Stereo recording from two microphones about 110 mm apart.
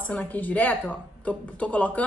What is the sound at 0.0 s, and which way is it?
A woman's voice, 15° left (ahead or behind).